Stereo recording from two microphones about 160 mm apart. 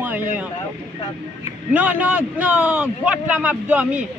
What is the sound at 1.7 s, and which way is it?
A man's voice, 10° right (ahead or behind).